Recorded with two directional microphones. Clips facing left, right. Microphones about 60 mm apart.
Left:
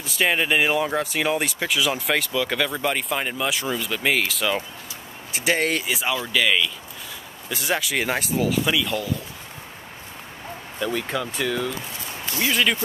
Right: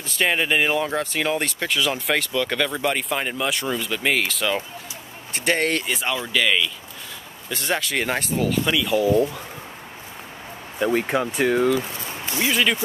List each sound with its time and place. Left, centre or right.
0.0 s speech: centre
10.8 s speech: right
12.4 s speech: centre